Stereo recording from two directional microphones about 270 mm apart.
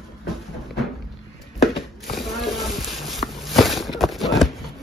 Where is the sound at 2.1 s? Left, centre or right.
Centre.